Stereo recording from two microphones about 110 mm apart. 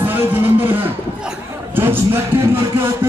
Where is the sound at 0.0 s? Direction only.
20° right (ahead or behind).